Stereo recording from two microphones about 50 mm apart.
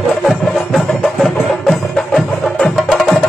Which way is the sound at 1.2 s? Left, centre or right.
Centre.